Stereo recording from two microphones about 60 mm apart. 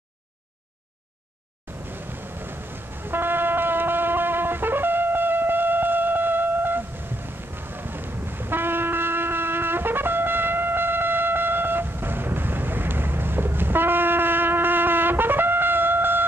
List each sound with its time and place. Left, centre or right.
1.9 s train: right
7.2 s music: right